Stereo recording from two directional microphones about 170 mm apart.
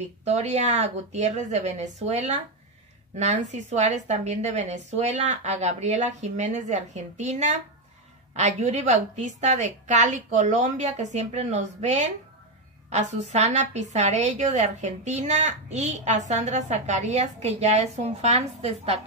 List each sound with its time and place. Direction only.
0.0 s a woman's voice: 40° right (ahead or behind)